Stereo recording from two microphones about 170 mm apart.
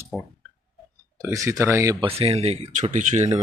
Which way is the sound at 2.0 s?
35° right (ahead or behind).